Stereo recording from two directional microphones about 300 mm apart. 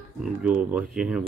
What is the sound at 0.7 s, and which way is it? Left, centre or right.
Speech, centre.